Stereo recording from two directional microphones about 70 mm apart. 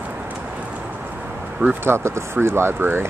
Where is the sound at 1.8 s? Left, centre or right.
Right.